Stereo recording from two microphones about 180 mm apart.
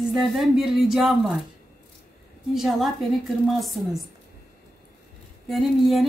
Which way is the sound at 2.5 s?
Centre (ahead or behind).